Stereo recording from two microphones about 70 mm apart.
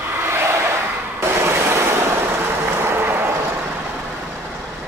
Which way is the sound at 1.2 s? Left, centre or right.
Right.